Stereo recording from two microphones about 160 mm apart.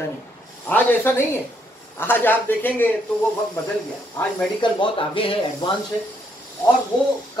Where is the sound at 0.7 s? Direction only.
10° left (ahead or behind).